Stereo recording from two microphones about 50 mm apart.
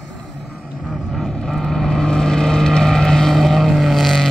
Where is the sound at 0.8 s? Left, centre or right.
Centre.